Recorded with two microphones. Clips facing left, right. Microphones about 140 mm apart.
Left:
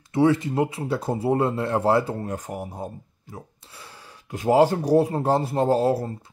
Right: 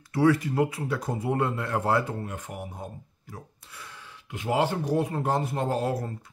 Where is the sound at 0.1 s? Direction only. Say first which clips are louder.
Left 3 dB; 25° left (ahead or behind).